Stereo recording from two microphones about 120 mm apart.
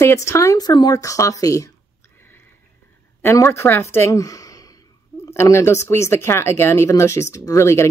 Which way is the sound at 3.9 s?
25° left (ahead or behind).